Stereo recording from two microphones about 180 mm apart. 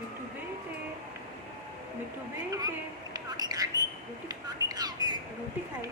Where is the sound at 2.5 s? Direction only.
20° right (ahead or behind).